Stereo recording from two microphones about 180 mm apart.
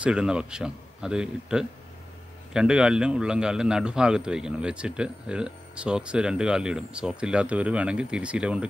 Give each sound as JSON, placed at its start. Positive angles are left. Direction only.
{"t": 0.0, "sound": "a man's voice", "side_deg": -5}